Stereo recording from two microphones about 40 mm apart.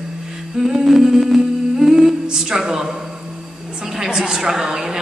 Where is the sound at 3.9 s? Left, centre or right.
Centre.